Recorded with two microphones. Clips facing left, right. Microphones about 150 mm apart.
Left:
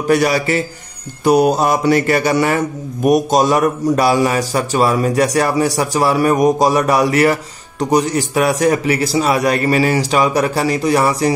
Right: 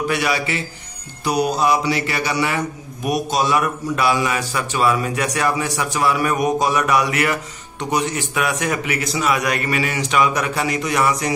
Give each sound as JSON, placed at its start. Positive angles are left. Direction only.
{"t": 0.1, "sound": "speech", "side_deg": 40}